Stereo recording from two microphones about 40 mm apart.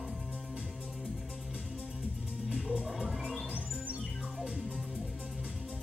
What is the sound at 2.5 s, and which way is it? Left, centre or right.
Music, right.